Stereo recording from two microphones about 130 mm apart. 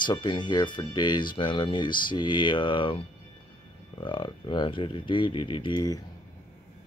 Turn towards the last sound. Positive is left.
turn(degrees=30)  # may be behind; listen again after turning